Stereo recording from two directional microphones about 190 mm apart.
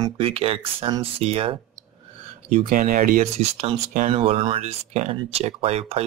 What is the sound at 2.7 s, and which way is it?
Speech, 45° right (ahead or behind).